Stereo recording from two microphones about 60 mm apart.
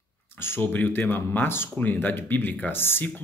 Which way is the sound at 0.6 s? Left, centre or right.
Left.